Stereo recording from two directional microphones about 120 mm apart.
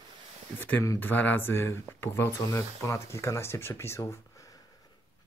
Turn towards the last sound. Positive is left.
turn(degrees=25)  # may be behind; listen again after turning